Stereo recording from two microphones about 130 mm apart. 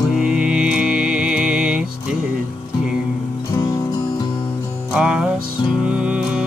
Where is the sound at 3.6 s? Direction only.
25° left (ahead or behind).